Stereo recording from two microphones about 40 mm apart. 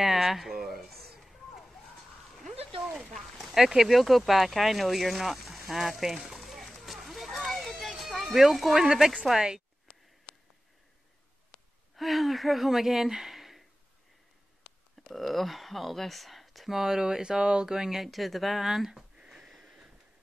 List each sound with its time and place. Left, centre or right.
0.0 s speech: centre
0.7 s a sound: centre
3.1 s a sound: centre
8.5 s speech: centre
9.3 s speech: centre
11.9 s speech: centre
15.1 s speech: centre
18.0 s speech: centre
19.1 s a sound: centre